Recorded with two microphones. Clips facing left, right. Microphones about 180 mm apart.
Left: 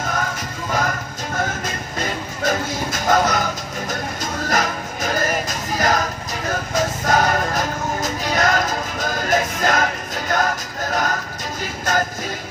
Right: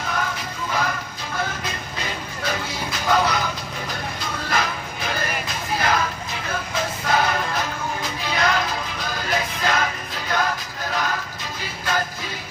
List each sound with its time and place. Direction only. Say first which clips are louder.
0.7 s music: left 3 dB; 45° left (ahead or behind)